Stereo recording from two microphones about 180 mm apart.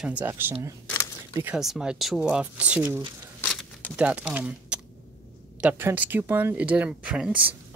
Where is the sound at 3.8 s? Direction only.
5° right (ahead or behind).